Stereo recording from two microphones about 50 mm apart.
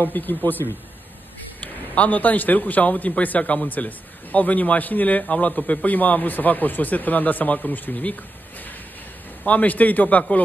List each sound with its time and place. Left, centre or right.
0.0 s a man's voice: left
9.4 s a man's voice: left